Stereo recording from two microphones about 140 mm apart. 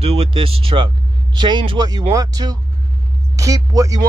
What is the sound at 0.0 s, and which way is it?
Speech, 45° right (ahead or behind).